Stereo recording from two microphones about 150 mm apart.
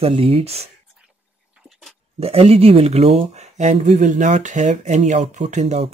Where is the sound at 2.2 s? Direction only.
40° right (ahead or behind).